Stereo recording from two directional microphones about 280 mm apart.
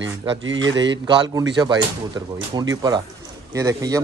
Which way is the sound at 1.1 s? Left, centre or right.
Centre.